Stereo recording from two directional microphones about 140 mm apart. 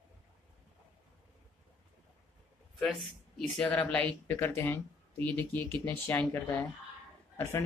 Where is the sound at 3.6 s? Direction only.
10° left (ahead or behind).